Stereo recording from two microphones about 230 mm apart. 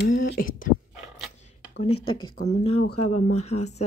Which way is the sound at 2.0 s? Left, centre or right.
Centre.